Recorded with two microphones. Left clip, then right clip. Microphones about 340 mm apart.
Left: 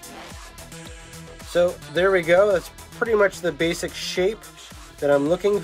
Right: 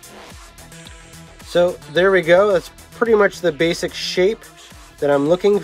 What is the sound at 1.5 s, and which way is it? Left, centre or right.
Speech, right.